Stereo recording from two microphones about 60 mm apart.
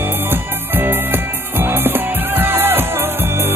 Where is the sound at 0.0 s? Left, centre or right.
Right.